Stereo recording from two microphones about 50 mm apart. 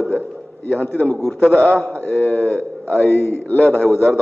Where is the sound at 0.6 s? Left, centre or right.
Left.